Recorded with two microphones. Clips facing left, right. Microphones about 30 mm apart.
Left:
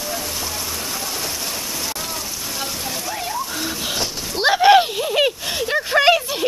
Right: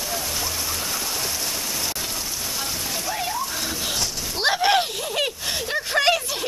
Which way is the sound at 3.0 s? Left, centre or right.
Centre.